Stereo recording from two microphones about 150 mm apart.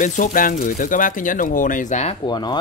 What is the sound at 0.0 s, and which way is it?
Speech, 60° left (ahead or behind).